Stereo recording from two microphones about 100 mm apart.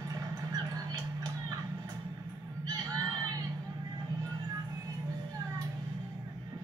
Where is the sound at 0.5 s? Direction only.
40° right (ahead or behind).